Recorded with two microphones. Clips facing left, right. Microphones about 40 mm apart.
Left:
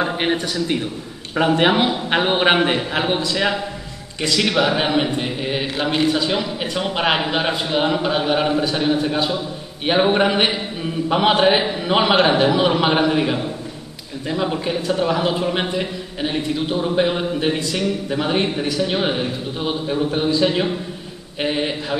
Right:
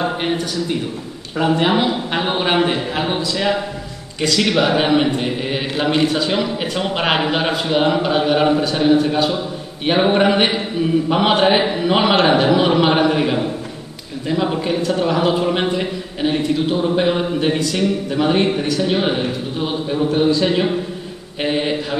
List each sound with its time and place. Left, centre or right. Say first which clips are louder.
0.0 s a sound: even; left
1.4 s speech: even; left
2.0 s a man's voice: left 2 dB; centre
4.4 s a man's voice: right 2 dB; centre
21.4 s a man's voice: right 2 dB; centre